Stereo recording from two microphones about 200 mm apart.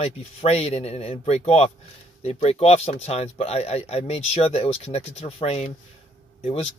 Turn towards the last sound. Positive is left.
turn(degrees=30)  # may be behind; listen again after turning